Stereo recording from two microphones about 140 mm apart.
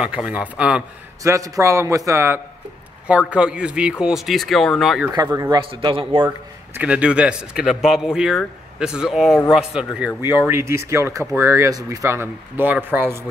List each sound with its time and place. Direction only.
0.0 s speech: 10° right (ahead or behind)
1.2 s a man's voice: 25° right (ahead or behind); by 5.0 s centre (ahead or behind)
5.1 s a man's voice: 25° right (ahead or behind)
5.6 s a man's voice: 40° right (ahead or behind)
6.2 s speech: 15° right (ahead or behind)